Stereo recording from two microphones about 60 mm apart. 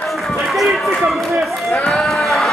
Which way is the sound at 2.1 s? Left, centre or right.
Centre.